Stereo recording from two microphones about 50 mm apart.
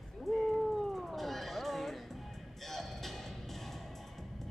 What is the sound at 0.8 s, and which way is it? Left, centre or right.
Cat, centre.